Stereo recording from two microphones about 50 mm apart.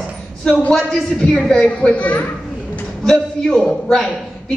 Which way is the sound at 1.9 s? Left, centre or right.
Left.